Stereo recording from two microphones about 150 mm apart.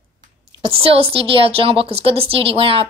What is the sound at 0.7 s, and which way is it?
A woman's voice, 40° right (ahead or behind).